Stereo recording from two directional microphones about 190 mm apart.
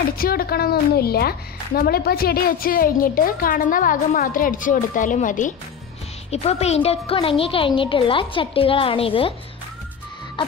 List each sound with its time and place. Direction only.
0.2 s a woman's voice: 50° left (ahead or behind); by 9.3 s 30° left (ahead or behind)